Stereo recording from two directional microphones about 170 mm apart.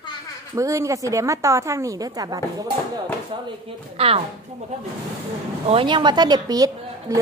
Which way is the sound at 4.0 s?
35° right (ahead or behind).